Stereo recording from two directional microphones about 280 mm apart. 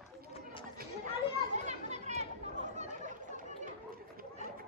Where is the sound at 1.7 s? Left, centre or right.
Right.